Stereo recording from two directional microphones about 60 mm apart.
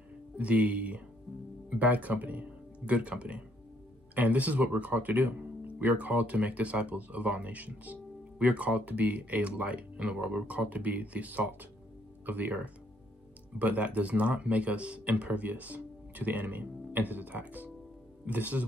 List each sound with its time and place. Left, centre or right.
0.4 s speech: right